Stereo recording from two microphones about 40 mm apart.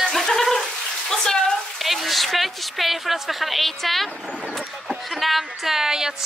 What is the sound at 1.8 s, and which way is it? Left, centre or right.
A woman's voice, centre.